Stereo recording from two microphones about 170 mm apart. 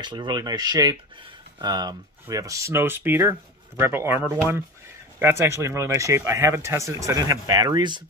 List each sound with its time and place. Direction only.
0.0 s speech: 25° right (ahead or behind)